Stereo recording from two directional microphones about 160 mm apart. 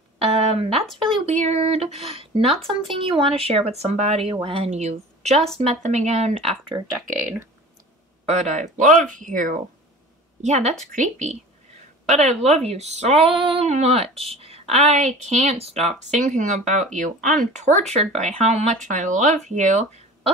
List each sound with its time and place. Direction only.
0.2 s music: 40° right (ahead or behind)
1.3 s speech: 45° right (ahead or behind)
7.1 s speech: 15° right (ahead or behind)
8.3 s speech: 45° right (ahead or behind)
10.4 s speech: 45° right (ahead or behind)